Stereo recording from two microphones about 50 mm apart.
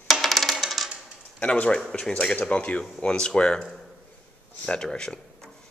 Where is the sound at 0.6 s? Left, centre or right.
Centre.